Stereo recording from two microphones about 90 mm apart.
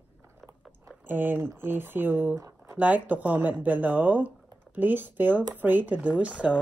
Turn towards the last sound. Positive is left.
turn(degrees=-15)  # may be behind; listen again after turning